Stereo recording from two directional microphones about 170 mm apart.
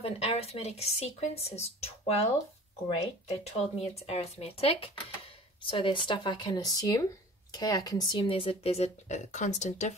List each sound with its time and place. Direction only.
0.0 s speech: 35° left (ahead or behind)
3.4 s speech: 40° left (ahead or behind)